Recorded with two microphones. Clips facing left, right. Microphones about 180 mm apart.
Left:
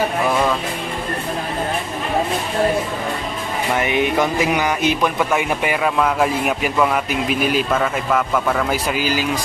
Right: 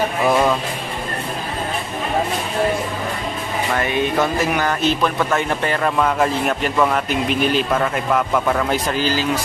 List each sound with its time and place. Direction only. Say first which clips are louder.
3.7 s a man's voice: left 1 dB; 15° left (ahead or behind)